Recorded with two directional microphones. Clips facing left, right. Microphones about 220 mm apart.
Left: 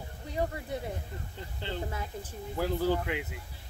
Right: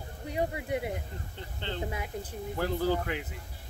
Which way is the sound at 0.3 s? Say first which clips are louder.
Right 2 dB; 15° right (ahead or behind).